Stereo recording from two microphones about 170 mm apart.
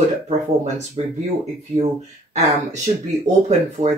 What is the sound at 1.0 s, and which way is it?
Speech, 35° right (ahead or behind).